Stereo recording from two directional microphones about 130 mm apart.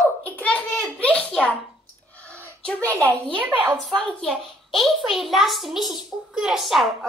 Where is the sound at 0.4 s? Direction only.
10° left (ahead or behind).